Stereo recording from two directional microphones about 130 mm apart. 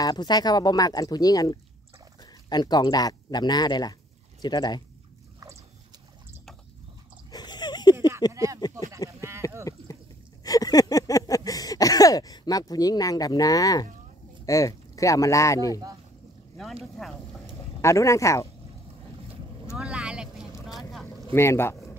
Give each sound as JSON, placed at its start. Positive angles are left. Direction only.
{"t": 0.0, "sound": "speech", "side_deg": 30}
{"t": 7.2, "sound": "dog", "side_deg": 30}
{"t": 8.3, "sound": "a sound", "side_deg": -25}
{"t": 8.5, "sound": "a sound", "side_deg": 30}
{"t": 14.4, "sound": "speech", "side_deg": 25}
{"t": 17.8, "sound": "speech", "side_deg": 25}
{"t": 19.7, "sound": "vehicle", "side_deg": -5}
{"t": 21.3, "sound": "speech", "side_deg": 20}